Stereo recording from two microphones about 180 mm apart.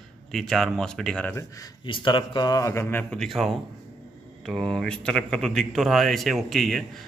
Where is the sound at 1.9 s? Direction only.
30° left (ahead or behind).